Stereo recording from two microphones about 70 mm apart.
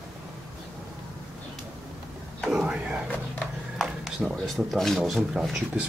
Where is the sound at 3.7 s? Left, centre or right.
Centre.